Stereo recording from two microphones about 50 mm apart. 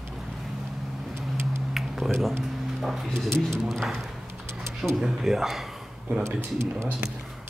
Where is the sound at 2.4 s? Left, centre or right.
Centre.